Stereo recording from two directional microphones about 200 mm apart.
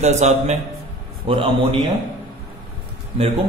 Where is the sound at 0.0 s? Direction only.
35° right (ahead or behind).